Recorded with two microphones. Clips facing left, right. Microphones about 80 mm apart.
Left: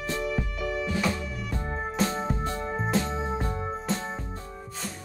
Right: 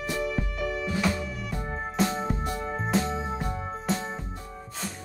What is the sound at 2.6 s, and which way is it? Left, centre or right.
Music, centre.